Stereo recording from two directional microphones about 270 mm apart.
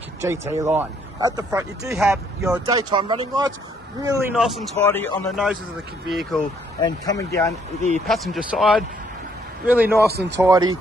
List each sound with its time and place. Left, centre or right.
0.2 s speech: centre
4.4 s a man's voice: centre
6.8 s speech: centre
8.1 s a man's voice: centre